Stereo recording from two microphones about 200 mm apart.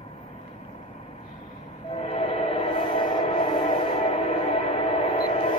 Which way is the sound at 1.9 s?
30° left (ahead or behind).